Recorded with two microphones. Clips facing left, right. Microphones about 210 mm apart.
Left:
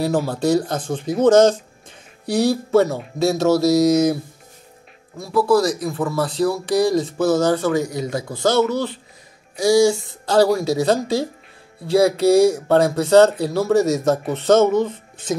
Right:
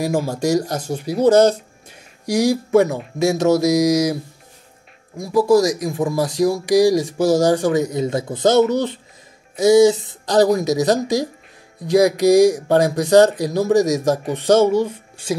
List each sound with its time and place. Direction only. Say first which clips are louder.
0.0 s speech: even; 10° right (ahead or behind)